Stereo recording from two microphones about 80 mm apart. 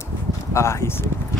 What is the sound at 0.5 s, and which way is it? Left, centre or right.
Speech, left.